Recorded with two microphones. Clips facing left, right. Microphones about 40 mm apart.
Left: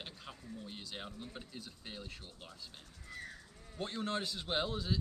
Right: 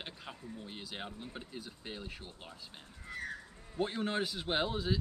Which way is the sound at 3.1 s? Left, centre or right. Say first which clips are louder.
Right 5 dB; right.